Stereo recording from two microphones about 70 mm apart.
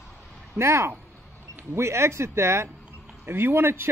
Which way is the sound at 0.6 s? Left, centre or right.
Right.